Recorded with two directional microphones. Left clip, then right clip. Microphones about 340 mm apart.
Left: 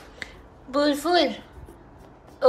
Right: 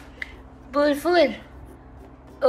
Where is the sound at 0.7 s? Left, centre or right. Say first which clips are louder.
Right 2 dB; centre.